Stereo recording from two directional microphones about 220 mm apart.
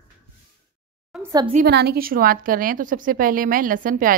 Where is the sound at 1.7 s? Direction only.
45° right (ahead or behind).